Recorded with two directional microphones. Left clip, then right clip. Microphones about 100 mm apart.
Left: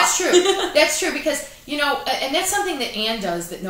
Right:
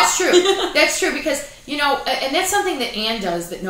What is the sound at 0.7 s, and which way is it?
A woman's voice, 15° left (ahead or behind).